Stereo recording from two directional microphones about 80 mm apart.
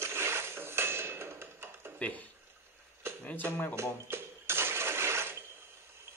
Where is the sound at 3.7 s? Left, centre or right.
Right.